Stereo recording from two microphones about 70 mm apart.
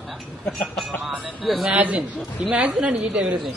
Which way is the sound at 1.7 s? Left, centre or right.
Right.